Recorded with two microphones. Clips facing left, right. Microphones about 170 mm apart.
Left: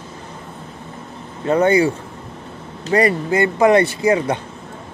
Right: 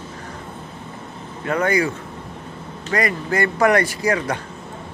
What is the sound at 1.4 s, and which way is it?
Speech, 25° left (ahead or behind).